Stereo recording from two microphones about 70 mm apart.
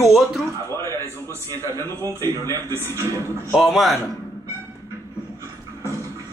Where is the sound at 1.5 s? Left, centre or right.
Left.